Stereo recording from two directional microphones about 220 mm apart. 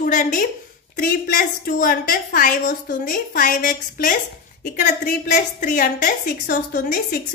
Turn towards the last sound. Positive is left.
turn(degrees=35)  # may be behind; listen again after turning